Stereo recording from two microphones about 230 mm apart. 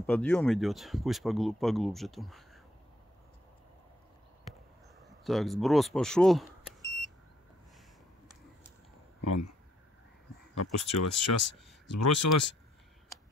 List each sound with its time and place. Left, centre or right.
0.0 s speech: centre
5.2 s speech: centre
10.6 s speech: left